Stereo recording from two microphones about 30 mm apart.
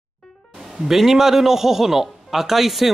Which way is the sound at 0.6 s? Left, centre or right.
Centre.